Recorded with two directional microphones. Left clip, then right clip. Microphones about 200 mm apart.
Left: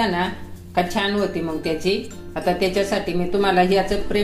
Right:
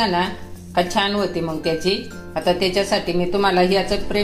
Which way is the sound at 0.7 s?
15° right (ahead or behind).